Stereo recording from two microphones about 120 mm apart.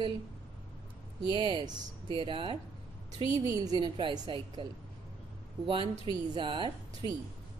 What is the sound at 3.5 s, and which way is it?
A woman's voice, 35° right (ahead or behind).